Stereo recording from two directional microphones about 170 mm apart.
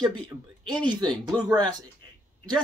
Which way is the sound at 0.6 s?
25° right (ahead or behind).